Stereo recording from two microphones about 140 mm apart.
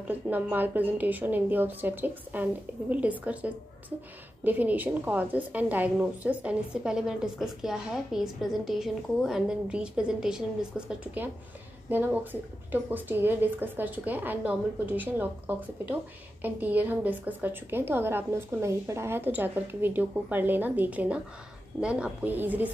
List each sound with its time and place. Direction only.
0.1 s a woman's voice: 15° right (ahead or behind)